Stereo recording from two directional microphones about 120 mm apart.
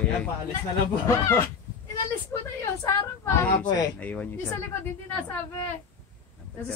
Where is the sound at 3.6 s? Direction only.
35° left (ahead or behind).